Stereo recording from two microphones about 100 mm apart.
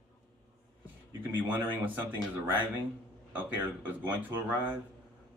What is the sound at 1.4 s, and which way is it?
Speech, 20° right (ahead or behind).